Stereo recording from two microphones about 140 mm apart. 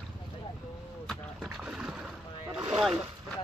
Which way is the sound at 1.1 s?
5° right (ahead or behind).